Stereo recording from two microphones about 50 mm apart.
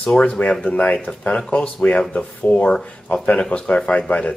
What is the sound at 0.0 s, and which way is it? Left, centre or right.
Speech, left.